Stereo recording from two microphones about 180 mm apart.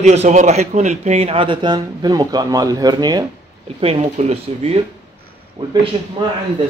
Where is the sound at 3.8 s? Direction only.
35° right (ahead or behind).